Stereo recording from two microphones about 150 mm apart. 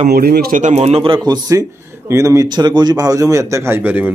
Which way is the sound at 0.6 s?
45° right (ahead or behind).